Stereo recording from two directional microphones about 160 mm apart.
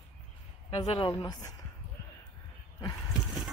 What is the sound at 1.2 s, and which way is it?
Speech, 25° left (ahead or behind).